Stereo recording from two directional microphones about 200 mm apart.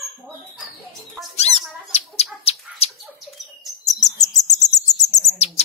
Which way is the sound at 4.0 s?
35° left (ahead or behind).